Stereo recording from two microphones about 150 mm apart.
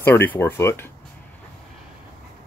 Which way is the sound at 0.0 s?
15° left (ahead or behind).